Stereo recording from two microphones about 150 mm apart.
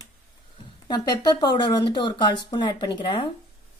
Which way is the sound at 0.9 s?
30° left (ahead or behind).